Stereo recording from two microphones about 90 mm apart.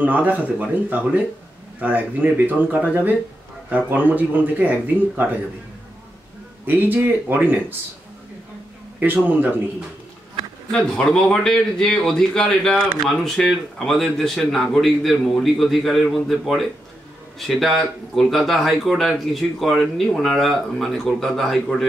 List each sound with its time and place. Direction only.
0.0 s speech: 20° right (ahead or behind)
6.6 s speech: 20° right (ahead or behind)
9.0 s speech: 20° right (ahead or behind)
10.7 s a man's voice: 5° left (ahead or behind)